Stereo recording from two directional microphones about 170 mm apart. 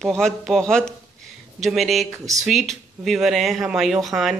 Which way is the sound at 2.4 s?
Centre (ahead or behind).